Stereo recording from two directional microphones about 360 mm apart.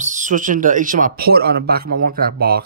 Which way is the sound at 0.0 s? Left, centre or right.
Right.